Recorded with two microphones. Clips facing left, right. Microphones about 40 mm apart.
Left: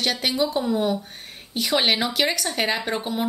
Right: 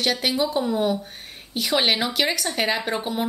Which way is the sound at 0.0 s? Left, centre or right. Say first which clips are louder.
Right 1 dB; centre.